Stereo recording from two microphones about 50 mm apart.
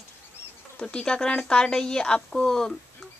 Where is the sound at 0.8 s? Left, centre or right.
Centre.